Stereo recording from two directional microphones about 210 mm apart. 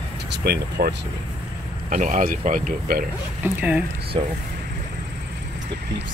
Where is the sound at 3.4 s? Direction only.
10° right (ahead or behind).